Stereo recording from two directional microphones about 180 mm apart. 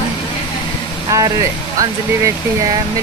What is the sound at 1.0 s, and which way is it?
Speech, 20° right (ahead or behind).